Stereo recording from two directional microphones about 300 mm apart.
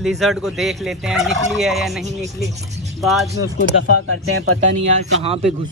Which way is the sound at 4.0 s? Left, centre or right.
Right.